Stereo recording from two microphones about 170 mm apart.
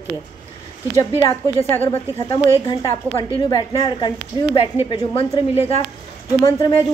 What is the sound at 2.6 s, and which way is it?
A woman's voice, 25° left (ahead or behind).